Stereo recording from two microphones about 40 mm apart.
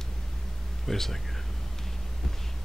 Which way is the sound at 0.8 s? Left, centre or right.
Centre.